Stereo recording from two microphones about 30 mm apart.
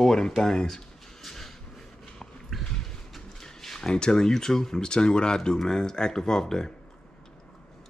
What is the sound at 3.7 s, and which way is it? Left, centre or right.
Speech, left.